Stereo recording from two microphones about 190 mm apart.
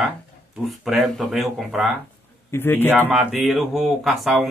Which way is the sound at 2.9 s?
5° right (ahead or behind).